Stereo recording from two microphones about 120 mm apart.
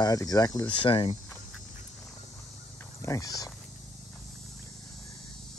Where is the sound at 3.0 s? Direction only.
30° left (ahead or behind).